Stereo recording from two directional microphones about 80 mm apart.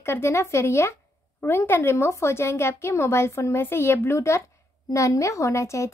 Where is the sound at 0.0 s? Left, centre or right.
Left.